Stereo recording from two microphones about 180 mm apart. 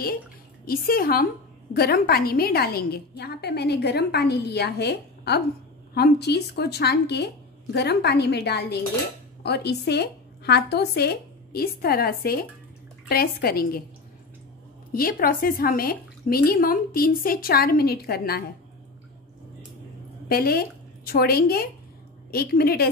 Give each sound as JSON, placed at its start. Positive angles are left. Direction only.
{"t": 0.7, "sound": "a woman's voice", "side_deg": 55}
{"t": 14.9, "sound": "a woman's voice", "side_deg": 55}
{"t": 20.2, "sound": "a woman's voice", "side_deg": 55}